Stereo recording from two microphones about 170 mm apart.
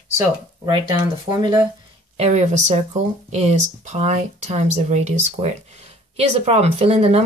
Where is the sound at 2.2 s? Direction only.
40° right (ahead or behind).